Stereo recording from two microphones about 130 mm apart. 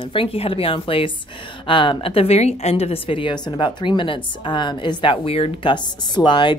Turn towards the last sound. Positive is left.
turn(degrees=40)  # may be behind; listen again after turning